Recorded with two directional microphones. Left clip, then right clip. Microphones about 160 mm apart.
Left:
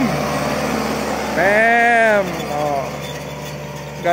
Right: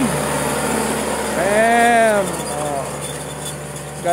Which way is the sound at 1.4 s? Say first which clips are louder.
Left 1 dB; centre (ahead or behind).